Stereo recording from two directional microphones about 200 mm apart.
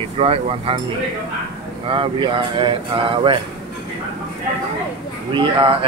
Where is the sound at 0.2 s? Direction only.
30° right (ahead or behind).